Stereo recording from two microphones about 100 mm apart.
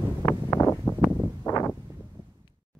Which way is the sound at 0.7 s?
15° left (ahead or behind).